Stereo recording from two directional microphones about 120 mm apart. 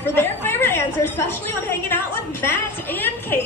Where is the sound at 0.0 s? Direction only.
20° left (ahead or behind).